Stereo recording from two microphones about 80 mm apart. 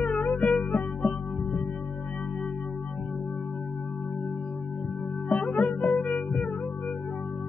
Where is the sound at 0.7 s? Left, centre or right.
Centre.